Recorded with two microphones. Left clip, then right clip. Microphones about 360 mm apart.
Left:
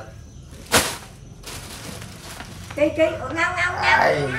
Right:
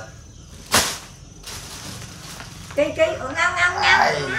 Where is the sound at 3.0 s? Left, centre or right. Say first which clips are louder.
Even; right.